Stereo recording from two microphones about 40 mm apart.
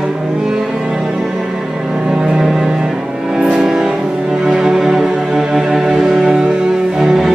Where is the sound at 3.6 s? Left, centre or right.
Centre.